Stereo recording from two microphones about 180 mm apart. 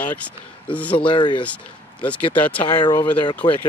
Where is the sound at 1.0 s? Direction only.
25° left (ahead or behind).